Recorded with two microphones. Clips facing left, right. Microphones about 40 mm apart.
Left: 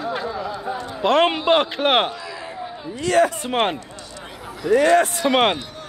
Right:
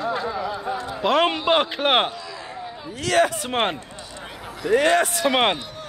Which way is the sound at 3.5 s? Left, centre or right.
Centre.